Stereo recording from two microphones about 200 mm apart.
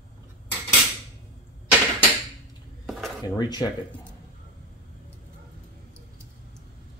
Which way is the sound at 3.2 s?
20° left (ahead or behind).